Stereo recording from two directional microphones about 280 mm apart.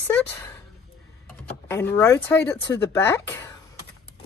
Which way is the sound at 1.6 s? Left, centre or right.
Centre.